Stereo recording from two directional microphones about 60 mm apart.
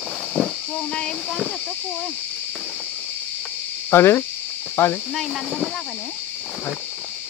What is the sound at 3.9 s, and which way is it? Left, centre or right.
Speech, left.